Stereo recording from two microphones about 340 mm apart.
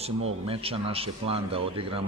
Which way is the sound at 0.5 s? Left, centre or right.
Centre.